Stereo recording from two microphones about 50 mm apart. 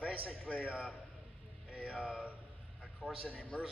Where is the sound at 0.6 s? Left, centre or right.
Right.